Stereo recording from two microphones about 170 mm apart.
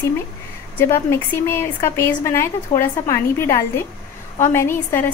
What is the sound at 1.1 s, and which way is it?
A woman's voice, 15° left (ahead or behind).